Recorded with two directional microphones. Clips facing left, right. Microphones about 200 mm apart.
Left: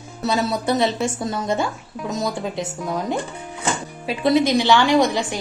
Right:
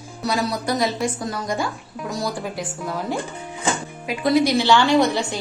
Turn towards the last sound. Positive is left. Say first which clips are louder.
# even
turn(degrees=15)  # may be behind; listen again after turning